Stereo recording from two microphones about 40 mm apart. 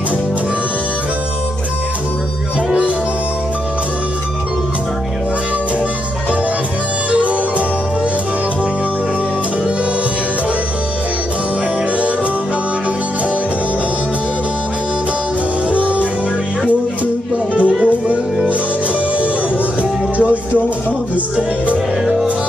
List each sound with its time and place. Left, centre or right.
7.1 s music: right
15.7 s music: right
17.8 s music: right
21.4 s music: right